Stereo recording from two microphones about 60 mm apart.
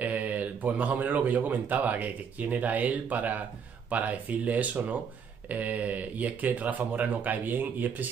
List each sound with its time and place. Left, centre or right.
0.0 s speech: right